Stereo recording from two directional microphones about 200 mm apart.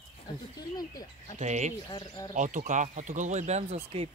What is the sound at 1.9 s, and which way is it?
Speech, 20° left (ahead or behind).